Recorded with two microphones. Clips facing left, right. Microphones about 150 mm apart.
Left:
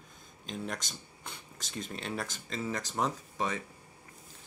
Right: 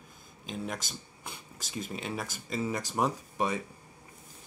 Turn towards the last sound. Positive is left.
turn(degrees=-15)  # may be behind; listen again after turning